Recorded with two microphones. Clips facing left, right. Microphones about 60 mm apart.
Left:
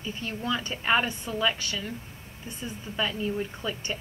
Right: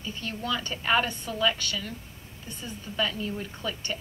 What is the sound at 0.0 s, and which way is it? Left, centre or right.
A woman's voice, left.